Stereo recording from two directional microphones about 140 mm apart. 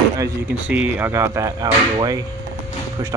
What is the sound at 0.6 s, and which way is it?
Speech, 10° right (ahead or behind).